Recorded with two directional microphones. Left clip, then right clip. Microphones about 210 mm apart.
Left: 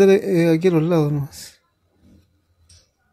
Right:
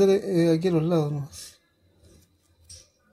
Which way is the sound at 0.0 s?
40° left (ahead or behind).